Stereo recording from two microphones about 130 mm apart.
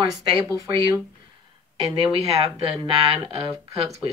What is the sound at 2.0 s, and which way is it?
Speech, 45° right (ahead or behind).